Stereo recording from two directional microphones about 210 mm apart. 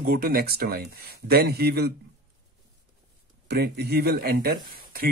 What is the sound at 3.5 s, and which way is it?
Speech, 50° right (ahead or behind).